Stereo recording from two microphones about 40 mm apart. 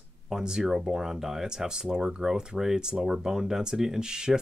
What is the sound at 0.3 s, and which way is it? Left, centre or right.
Speech, centre.